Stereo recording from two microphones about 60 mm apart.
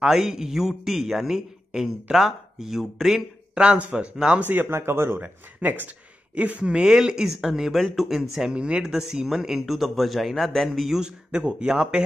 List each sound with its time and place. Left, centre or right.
0.0 s a man's voice: centre
3.5 s speech: centre
4.4 s speech: right
4.7 s speech: right
5.2 s a man's voice: right; by 8.5 s centre
8.5 s a man's voice: centre
11.0 s speech: centre